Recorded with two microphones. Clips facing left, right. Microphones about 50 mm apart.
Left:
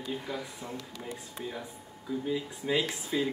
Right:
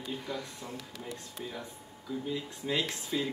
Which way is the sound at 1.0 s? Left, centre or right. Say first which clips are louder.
Left 1 dB; left.